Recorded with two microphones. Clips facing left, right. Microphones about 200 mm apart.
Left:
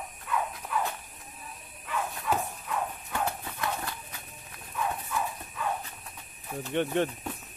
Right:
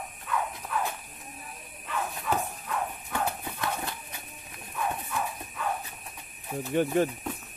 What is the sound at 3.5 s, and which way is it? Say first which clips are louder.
Clip-clop: right 1 dB; 25° right (ahead or behind).